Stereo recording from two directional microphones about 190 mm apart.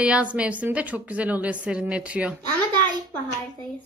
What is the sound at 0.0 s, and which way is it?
A woman's voice, 5° right (ahead or behind).